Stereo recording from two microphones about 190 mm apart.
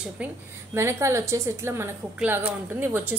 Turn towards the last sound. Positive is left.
turn(degrees=-10)  # may be behind; listen again after turning